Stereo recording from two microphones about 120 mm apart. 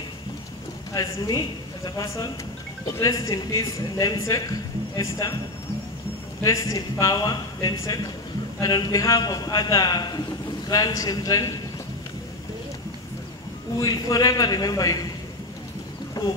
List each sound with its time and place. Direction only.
0.9 s a man's voice: 30° left (ahead or behind)
6.4 s a man's voice: 25° left (ahead or behind)
13.7 s a man's voice: 25° left (ahead or behind)
16.2 s boat: 30° left (ahead or behind)